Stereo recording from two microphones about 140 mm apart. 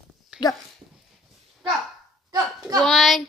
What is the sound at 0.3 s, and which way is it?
Dog, 5° right (ahead or behind).